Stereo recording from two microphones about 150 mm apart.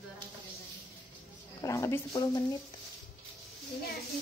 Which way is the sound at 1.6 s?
20° left (ahead or behind).